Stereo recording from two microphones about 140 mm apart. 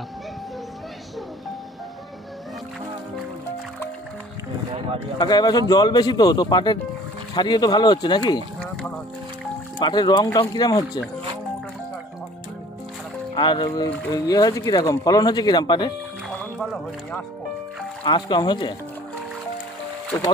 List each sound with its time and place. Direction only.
5.2 s speech: 30° left (ahead or behind)
9.8 s speech: 30° left (ahead or behind)
13.3 s speech: 35° left (ahead or behind)
16.3 s music: centre (ahead or behind)
18.0 s speech: 30° left (ahead or behind)